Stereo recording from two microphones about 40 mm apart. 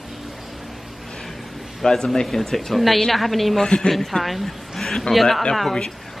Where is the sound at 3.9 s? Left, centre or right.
Centre.